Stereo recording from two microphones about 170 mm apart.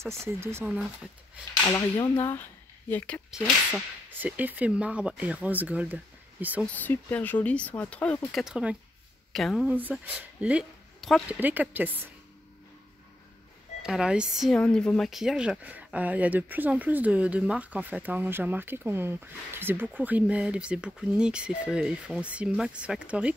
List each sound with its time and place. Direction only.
0.0 s a woman's voice: 15° right (ahead or behind)
1.7 s speech: 15° left (ahead or behind)
3.3 s a woman's voice: centre (ahead or behind)
6.6 s a woman's voice: 10° left (ahead or behind)
11.3 s a woman's voice: 10° right (ahead or behind)
13.8 s a woman's voice: 5° right (ahead or behind)